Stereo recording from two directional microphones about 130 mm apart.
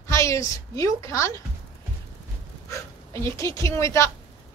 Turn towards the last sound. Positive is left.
turn(degrees=20)  # may be behind; listen again after turning